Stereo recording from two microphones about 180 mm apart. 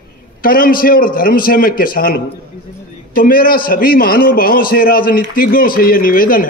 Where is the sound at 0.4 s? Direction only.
55° left (ahead or behind).